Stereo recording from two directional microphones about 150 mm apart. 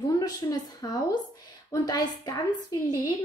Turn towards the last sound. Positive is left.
turn(degrees=25)  # may be behind; listen again after turning